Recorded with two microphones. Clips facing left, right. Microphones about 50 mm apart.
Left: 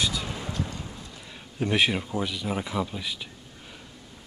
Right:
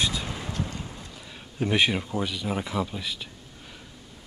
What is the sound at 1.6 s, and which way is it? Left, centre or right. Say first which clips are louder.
A man's voice: even; centre.